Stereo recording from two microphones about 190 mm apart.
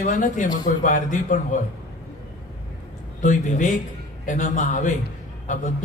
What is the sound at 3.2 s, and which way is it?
A man's voice, 45° left (ahead or behind).